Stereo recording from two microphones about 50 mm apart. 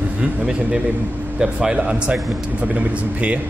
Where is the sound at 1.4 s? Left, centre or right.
Centre.